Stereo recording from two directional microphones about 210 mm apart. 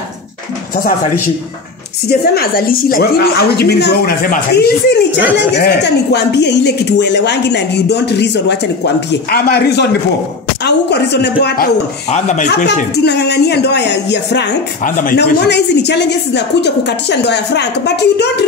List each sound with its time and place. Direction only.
2.0 s a woman's voice: 45° left (ahead or behind)
12.1 s speech: 35° left (ahead or behind)
12.7 s a woman's voice: 50° left (ahead or behind)
14.8 s a woman's voice: 40° left (ahead or behind)